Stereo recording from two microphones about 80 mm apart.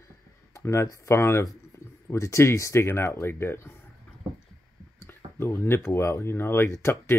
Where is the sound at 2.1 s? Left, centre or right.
Left.